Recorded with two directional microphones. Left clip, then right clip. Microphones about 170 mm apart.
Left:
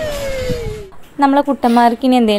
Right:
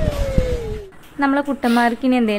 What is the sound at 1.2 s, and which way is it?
Speech, 20° left (ahead or behind).